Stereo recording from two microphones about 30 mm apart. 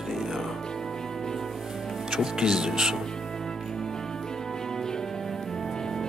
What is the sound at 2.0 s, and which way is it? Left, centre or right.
Speech, centre.